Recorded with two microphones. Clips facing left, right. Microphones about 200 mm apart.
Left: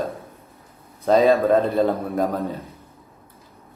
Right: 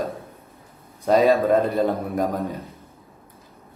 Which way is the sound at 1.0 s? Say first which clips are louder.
Left 1 dB; 15° right (ahead or behind).